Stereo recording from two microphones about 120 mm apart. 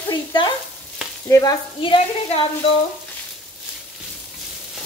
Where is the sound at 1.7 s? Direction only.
45° left (ahead or behind).